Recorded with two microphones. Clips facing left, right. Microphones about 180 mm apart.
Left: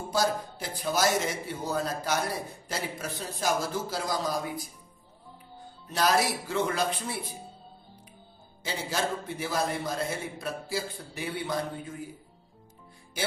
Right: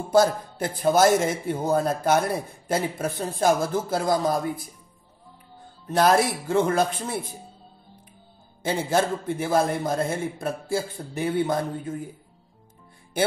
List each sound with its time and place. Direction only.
0.1 s a man's voice: 55° right (ahead or behind)
5.9 s a man's voice: 55° right (ahead or behind)
8.6 s a man's voice: 50° right (ahead or behind)